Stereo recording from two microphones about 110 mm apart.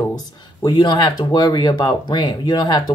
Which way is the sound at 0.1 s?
35° left (ahead or behind).